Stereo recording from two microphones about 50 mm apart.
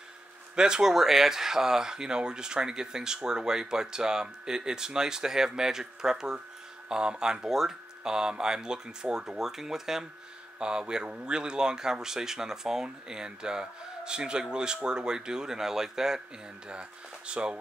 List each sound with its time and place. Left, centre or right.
0.6 s speech: centre
17.3 s speech: centre